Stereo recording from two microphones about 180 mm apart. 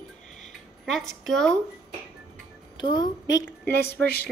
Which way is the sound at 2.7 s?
25° left (ahead or behind).